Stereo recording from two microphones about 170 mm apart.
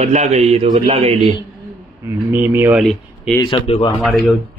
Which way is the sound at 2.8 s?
Centre (ahead or behind).